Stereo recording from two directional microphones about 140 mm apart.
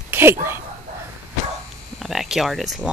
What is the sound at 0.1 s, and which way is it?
Speech, 15° right (ahead or behind).